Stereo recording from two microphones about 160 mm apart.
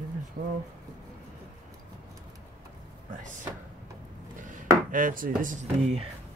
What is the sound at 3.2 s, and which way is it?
Drawer open or close, 55° right (ahead or behind).